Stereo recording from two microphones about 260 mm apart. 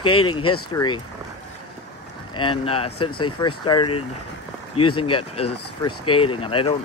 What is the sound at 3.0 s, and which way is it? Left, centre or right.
Speech, left.